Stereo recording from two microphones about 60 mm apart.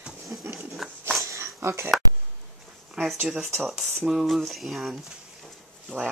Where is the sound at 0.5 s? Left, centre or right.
Right.